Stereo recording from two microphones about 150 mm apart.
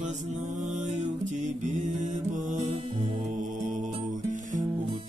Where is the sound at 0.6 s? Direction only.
50° right (ahead or behind).